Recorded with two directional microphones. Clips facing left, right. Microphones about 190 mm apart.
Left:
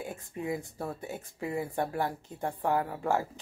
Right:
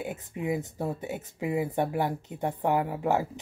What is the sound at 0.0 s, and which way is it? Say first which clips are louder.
Speech: right 3 dB; 20° right (ahead or behind).